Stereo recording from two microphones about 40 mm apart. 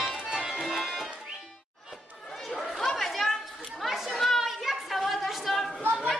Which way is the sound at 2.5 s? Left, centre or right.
Centre.